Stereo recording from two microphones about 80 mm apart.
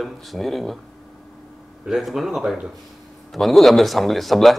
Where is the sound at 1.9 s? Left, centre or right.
Centre.